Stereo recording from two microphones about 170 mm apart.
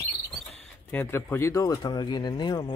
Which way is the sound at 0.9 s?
15° left (ahead or behind).